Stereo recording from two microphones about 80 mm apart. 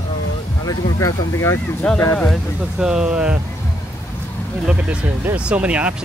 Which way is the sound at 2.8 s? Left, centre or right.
Centre.